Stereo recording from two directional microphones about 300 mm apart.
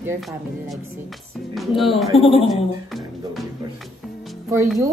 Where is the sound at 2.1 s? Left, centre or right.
Centre.